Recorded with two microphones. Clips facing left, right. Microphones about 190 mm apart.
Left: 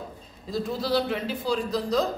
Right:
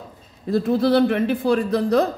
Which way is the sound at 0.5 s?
60° right (ahead or behind).